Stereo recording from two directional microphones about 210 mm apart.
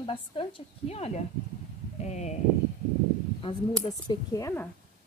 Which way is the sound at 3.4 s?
25° left (ahead or behind).